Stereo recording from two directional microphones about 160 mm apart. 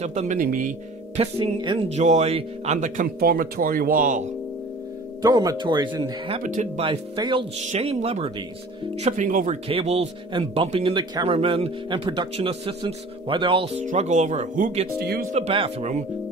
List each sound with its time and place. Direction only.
0.0 s speech: 45° right (ahead or behind)
1.1 s speech: 35° right (ahead or behind)
1.9 s speech: 45° right (ahead or behind)
5.2 s speech: 20° right (ahead or behind)
6.4 s speech: 55° right (ahead or behind)
6.8 s speech: 30° right (ahead or behind); by 9.6 s 55° right (ahead or behind)
9.7 s speech: 40° right (ahead or behind)
13.8 s speech: 45° right (ahead or behind)
15.0 s speech: 75° right (ahead or behind)
15.3 s speech: 35° right (ahead or behind)